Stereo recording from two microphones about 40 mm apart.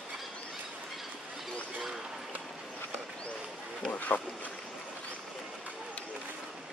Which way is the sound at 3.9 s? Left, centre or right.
Left.